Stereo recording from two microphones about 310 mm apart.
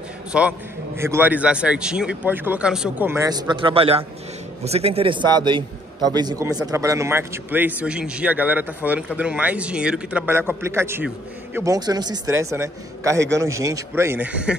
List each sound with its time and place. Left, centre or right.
0.3 s a man's voice: centre